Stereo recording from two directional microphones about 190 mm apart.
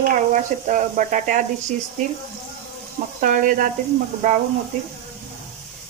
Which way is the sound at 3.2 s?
45° right (ahead or behind).